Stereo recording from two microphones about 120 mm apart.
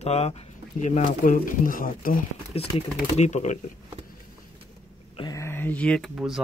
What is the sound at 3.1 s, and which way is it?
Speech, 70° left (ahead or behind).